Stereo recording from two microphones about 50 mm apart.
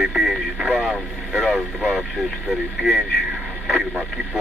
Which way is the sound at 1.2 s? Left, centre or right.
Centre.